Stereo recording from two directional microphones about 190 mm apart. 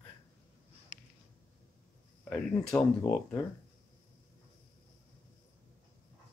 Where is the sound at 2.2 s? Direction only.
5° left (ahead or behind).